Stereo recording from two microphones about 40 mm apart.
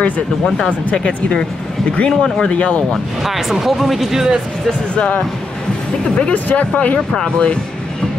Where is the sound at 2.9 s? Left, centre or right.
Centre.